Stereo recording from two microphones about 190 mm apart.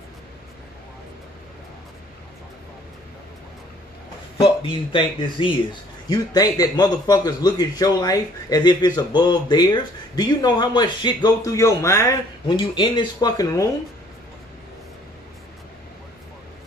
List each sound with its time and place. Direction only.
4.4 s a man's voice: 25° left (ahead or behind)